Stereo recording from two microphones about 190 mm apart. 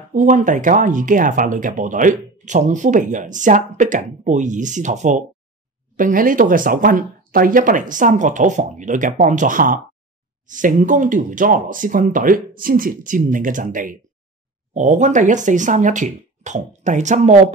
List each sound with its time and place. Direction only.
0.1 s speech: 40° right (ahead or behind)